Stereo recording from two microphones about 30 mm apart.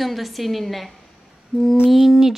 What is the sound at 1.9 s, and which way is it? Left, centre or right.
Speech, centre.